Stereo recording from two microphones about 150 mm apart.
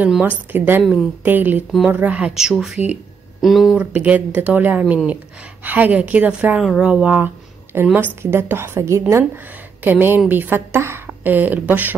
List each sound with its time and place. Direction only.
0.0 s speech: 10° right (ahead or behind)
3.8 s speech: 10° right (ahead or behind)